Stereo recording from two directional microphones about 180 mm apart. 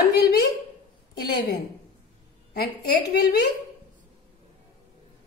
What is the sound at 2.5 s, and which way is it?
A woman's voice, 65° left (ahead or behind).